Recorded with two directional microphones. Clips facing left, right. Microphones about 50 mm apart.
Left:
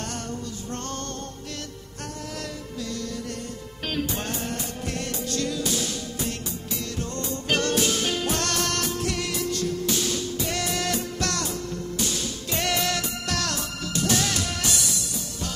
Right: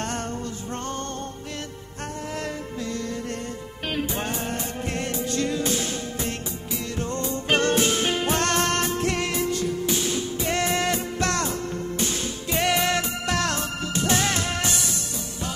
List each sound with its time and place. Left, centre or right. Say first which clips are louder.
3.9 s music: right 1 dB; right
7.0 s music: right 5 dB; right
9.5 s music: right 2 dB; centre